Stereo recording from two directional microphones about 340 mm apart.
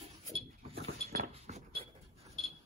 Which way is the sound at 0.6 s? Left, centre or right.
Centre.